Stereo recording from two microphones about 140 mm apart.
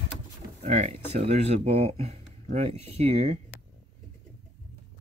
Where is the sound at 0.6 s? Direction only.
55° right (ahead or behind).